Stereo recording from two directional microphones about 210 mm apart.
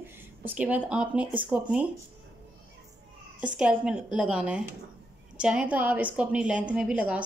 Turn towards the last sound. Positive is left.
turn(degrees=-5)  # may be behind; listen again after turning